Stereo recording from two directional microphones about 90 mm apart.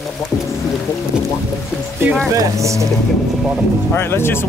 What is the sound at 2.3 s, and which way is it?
Speech, 35° right (ahead or behind).